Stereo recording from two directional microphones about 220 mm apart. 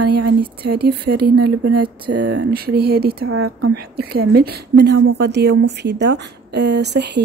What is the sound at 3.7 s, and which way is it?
A woman's voice, 45° right (ahead or behind).